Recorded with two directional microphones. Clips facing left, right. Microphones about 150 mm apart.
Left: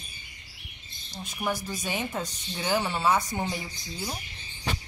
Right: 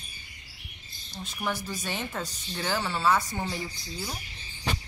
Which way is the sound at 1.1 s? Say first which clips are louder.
Left 2 dB; 15° left (ahead or behind).